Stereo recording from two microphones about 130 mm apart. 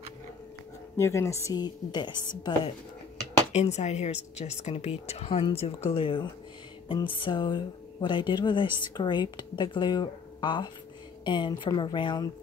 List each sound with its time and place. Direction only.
0.9 s a woman's voice: 20° left (ahead or behind); by 2.7 s 40° left (ahead or behind)
3.5 s speech: 60° left (ahead or behind); by 12.3 s 35° left (ahead or behind)